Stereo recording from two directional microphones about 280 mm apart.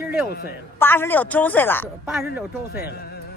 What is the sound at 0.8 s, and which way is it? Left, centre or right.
A woman's voice, centre.